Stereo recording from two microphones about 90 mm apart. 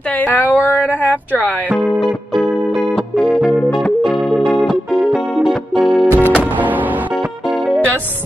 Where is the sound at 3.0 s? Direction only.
Centre (ahead or behind).